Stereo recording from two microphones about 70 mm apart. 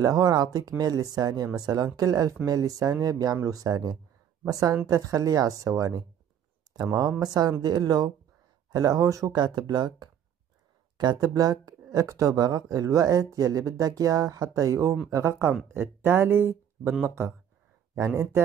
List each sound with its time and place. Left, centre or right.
0.0 s speech: right
2.0 s speech: right
3.4 s speech: right
8.6 s speech: right
9.3 s speech: right
17.9 s speech: right